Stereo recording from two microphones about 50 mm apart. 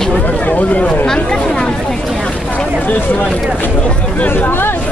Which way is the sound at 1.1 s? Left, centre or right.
Centre.